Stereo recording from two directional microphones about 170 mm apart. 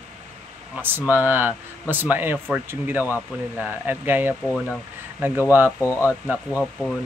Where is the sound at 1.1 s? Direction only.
10° right (ahead or behind).